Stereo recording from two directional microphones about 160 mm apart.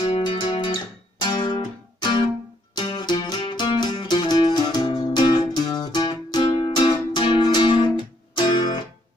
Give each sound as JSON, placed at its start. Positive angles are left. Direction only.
{"t": 0.2, "sound": "music", "side_deg": 30}